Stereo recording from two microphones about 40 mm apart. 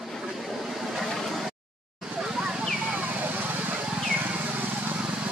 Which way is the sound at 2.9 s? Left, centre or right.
Right.